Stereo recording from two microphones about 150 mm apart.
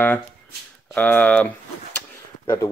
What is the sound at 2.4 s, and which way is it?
Speech, 20° left (ahead or behind).